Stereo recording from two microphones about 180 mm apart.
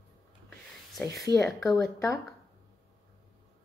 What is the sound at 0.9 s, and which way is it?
Speech, centre (ahead or behind).